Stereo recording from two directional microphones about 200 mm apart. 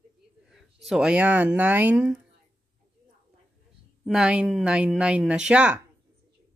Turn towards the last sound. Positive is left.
turn(degrees=-5)  # may be behind; listen again after turning